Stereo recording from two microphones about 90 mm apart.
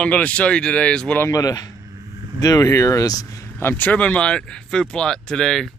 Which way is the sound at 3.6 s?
20° left (ahead or behind).